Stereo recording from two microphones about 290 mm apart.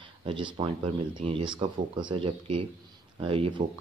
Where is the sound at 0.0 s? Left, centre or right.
Centre.